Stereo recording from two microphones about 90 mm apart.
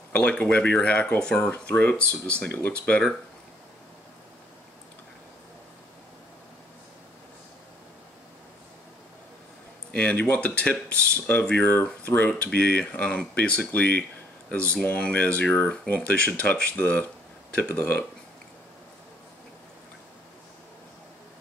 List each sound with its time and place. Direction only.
0.1 s speech: 10° left (ahead or behind)
9.8 s speech: 15° left (ahead or behind)